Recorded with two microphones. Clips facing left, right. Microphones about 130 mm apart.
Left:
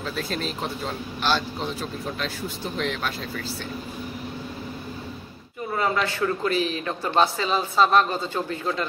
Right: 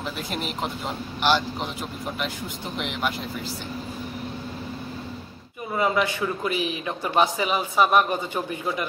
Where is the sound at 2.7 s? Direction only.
15° right (ahead or behind).